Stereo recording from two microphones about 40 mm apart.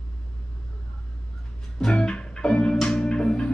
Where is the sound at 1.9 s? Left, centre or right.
Left.